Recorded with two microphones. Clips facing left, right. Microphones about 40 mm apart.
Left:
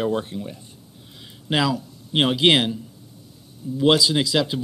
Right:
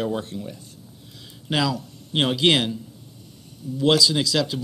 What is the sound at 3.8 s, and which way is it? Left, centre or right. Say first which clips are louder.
Speech: left 1 dB; centre.